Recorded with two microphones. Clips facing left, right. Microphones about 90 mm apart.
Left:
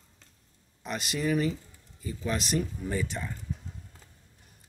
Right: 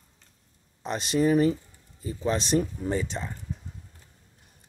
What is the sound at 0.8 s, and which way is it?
Speech, 30° right (ahead or behind).